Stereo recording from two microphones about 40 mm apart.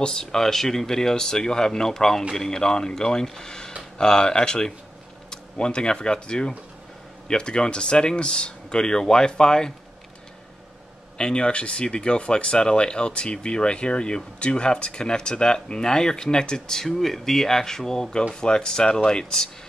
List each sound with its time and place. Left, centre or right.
0.0 s speech: centre
11.1 s speech: left